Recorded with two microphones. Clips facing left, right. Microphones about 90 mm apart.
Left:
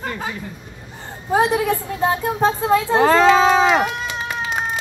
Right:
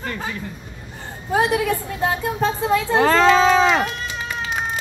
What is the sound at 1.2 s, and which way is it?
Speech, 30° left (ahead or behind).